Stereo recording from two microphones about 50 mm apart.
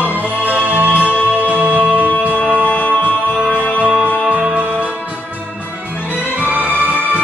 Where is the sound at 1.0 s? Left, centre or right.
Left.